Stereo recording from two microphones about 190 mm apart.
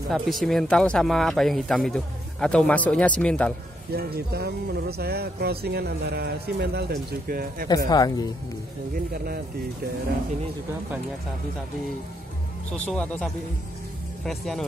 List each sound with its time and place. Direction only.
0.1 s speech: centre (ahead or behind)
3.9 s speech: 55° right (ahead or behind)
7.6 s speech: 20° left (ahead or behind)
8.9 s speech: 50° right (ahead or behind)
12.7 s speech: 5° left (ahead or behind)